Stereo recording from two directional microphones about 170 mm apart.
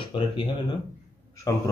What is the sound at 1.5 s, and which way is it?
Speech, 20° left (ahead or behind).